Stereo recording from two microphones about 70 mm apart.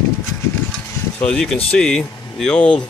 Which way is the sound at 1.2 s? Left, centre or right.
Centre.